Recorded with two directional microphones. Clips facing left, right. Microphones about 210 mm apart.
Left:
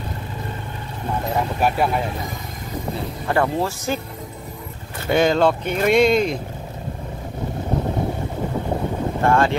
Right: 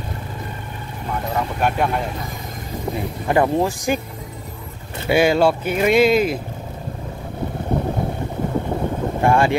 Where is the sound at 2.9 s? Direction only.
15° right (ahead or behind).